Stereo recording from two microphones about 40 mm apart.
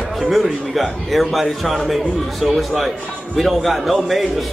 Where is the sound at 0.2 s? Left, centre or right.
Centre.